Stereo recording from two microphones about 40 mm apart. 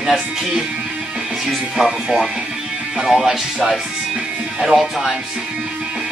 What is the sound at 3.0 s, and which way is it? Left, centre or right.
Speech, centre.